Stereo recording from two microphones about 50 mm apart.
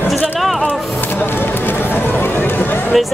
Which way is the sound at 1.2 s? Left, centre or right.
Left.